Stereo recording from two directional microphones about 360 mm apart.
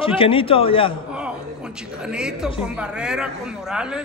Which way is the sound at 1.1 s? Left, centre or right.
Centre.